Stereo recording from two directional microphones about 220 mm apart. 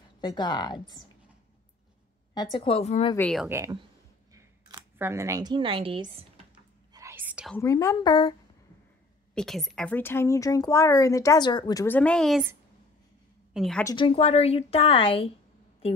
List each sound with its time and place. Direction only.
0.2 s a woman's voice: 20° left (ahead or behind)
2.3 s a woman's voice: 20° left (ahead or behind)
3.2 s speech: 5° left (ahead or behind)
3.4 s speech: 15° right (ahead or behind)
6.9 s whispering: 15° right (ahead or behind)
7.5 s a woman's voice: 15° left (ahead or behind)
9.3 s a woman's voice: centre (ahead or behind)
13.5 s a woman's voice: centre (ahead or behind)
13.8 s a woman's voice: 25° left (ahead or behind)